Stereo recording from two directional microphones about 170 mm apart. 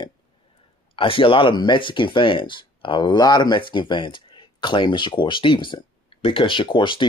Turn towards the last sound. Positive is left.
turn(degrees=30)  # may be behind; listen again after turning